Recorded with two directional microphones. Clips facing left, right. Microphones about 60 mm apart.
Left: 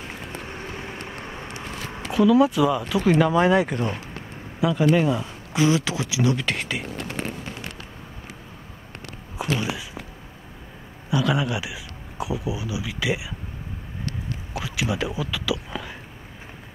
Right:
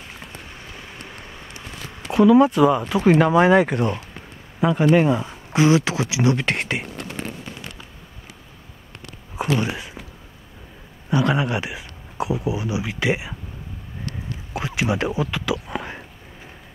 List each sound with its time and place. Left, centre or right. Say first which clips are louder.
2.0 s speech: right 3 dB; centre; by 5.6 s right
5.6 s speech: right 4 dB; centre; by 6.8 s right
9.4 s speech: right 4 dB; right
11.1 s speech: right 3 dB; right
14.6 s speech: right 4 dB; right
15.7 s a sound: right 4 dB; right